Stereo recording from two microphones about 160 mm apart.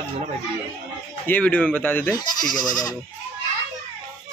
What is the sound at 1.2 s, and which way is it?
Speech, 10° left (ahead or behind).